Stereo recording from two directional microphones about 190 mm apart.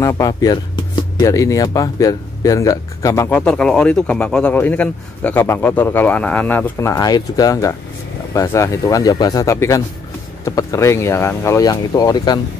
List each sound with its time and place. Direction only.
0.0 s speech: 20° left (ahead or behind)